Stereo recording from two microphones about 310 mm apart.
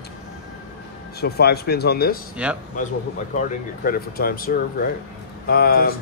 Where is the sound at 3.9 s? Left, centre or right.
Left.